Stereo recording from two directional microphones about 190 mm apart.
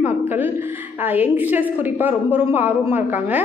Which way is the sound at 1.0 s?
10° right (ahead or behind).